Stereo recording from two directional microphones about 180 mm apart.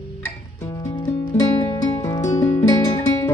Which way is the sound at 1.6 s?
20° left (ahead or behind).